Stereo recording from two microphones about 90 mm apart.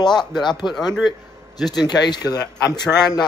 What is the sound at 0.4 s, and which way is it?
Speech, 55° left (ahead or behind).